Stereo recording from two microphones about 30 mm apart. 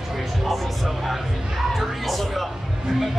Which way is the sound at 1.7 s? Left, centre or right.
Centre.